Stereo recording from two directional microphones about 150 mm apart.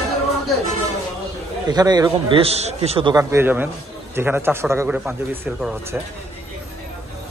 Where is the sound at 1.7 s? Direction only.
25° right (ahead or behind); by 3.1 s 40° right (ahead or behind).